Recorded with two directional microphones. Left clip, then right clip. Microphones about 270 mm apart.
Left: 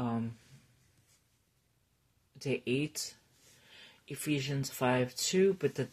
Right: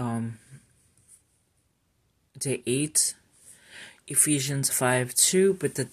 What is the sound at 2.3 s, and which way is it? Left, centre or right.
Speech, right.